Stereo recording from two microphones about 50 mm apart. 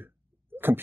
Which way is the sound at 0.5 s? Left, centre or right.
Right.